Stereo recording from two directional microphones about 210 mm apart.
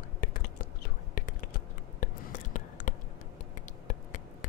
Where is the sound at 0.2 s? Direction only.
40° left (ahead or behind).